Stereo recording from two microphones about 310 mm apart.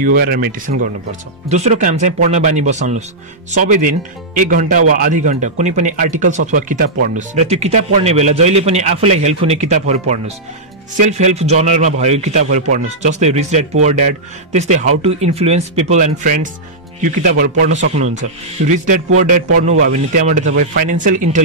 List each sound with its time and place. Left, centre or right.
0.0 s speech: right